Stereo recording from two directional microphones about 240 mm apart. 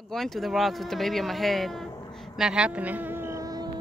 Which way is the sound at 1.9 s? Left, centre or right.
Centre.